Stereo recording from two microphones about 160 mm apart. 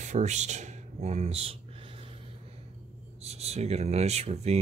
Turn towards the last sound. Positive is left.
turn(degrees=-40)  # may be behind; listen again after turning